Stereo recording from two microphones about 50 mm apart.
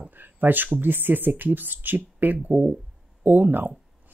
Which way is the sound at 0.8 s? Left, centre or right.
Right.